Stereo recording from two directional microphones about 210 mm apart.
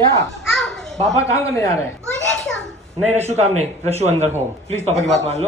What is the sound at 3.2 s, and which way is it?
A man's voice, 30° right (ahead or behind).